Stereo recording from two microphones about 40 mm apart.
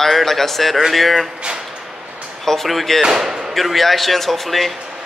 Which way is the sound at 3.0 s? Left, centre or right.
Centre.